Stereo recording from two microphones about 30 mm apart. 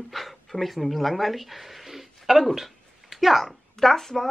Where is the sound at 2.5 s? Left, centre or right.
Centre.